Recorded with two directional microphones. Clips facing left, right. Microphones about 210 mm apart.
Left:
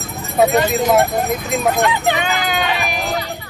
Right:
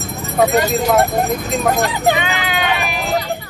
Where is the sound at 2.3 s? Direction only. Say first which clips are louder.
Left 1 dB; 40° left (ahead or behind).